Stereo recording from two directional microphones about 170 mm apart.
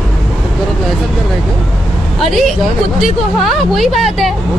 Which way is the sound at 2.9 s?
Centre (ahead or behind).